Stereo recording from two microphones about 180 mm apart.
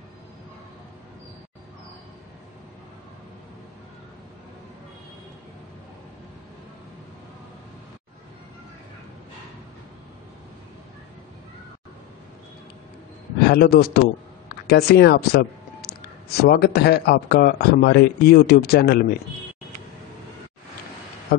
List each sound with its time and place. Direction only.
13.5 s speech: 60° left (ahead or behind)